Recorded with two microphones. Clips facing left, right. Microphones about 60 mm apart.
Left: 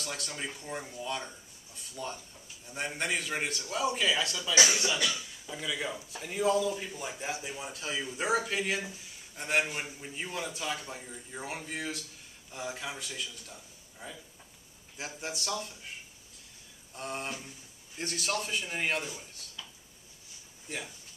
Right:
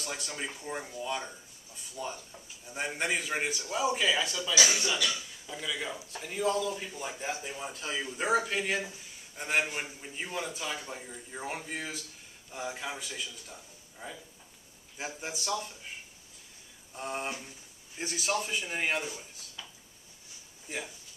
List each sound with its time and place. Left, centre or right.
0.0 s a man's voice: centre
16.9 s a man's voice: centre
20.6 s speech: centre